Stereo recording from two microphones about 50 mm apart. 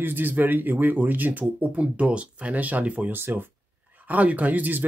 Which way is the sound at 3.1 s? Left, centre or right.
Right.